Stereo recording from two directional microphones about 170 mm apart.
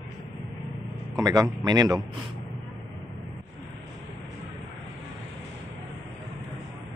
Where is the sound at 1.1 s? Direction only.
20° right (ahead or behind).